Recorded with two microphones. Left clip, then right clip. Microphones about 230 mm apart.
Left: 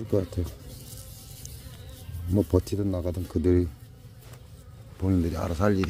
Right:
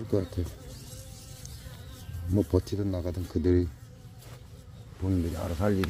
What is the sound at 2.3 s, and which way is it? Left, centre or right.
Speech, centre.